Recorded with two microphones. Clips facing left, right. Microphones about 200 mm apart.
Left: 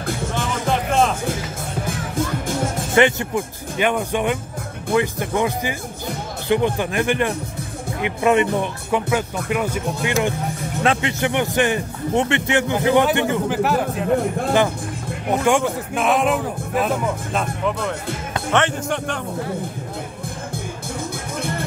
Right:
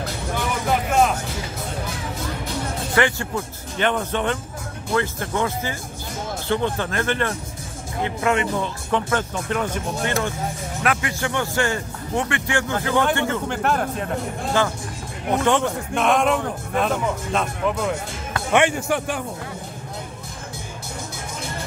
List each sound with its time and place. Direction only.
0.7 s music: 5° right (ahead or behind)
2.9 s speech: 20° left (ahead or behind)
10.8 s a man's voice: 25° left (ahead or behind)
13.5 s speech: 5° left (ahead or behind)
15.3 s speech: 10° left (ahead or behind); by 19.1 s 10° right (ahead or behind)